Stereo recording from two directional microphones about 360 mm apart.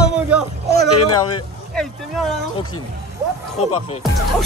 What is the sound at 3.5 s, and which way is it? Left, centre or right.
Speech, centre.